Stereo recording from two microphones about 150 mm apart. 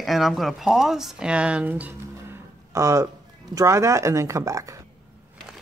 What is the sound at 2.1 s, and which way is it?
Music, 20° right (ahead or behind).